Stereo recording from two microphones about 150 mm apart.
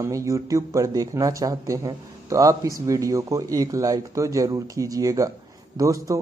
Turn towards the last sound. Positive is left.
turn(degrees=-20)  # may be behind; listen again after turning